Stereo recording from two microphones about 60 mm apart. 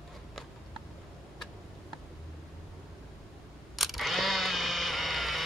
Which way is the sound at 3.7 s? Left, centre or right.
Centre.